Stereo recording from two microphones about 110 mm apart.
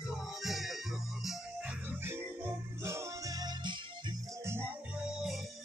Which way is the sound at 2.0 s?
25° right (ahead or behind).